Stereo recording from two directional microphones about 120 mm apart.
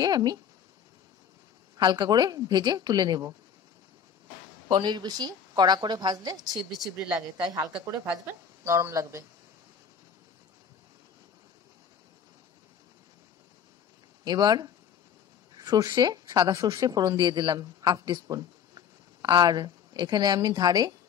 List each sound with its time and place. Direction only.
0.0 s speech: 35° right (ahead or behind)
1.8 s speech: 40° right (ahead or behind)
4.6 s speech: 40° right (ahead or behind)
6.5 s speech: centre (ahead or behind)
7.2 s speech: 30° right (ahead or behind)
8.1 s a woman's voice: 20° right (ahead or behind)
14.2 s speech: 35° right (ahead or behind)